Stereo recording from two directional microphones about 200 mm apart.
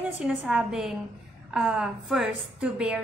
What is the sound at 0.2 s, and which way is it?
A woman's voice, 5° right (ahead or behind).